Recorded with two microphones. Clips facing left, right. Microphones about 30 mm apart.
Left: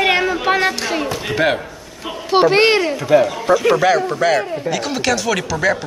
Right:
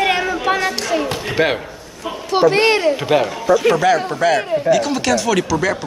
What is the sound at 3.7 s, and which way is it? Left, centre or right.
A woman's voice, centre.